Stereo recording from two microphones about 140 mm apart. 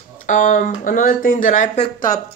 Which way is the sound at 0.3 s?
65° left (ahead or behind).